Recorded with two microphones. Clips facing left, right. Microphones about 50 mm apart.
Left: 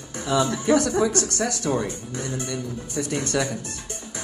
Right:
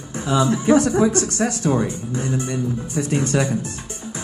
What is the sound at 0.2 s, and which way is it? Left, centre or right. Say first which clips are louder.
Speech: right 4 dB; right.